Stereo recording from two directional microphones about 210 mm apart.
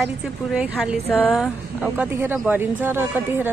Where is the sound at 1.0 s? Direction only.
10° left (ahead or behind).